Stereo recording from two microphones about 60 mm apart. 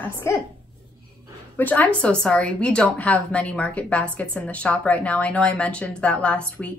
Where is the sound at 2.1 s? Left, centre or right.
Centre.